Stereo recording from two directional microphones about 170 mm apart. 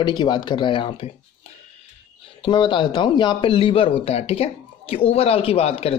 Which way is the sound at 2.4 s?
30° left (ahead or behind).